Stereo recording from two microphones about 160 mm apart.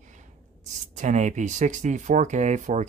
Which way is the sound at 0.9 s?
50° right (ahead or behind).